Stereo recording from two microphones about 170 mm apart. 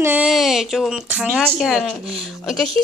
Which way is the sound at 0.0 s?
10° right (ahead or behind).